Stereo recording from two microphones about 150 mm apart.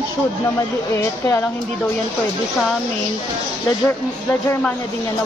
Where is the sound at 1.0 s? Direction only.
20° left (ahead or behind).